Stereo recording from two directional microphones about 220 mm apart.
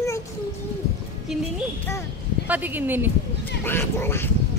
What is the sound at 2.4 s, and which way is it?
Speech, 10° right (ahead or behind).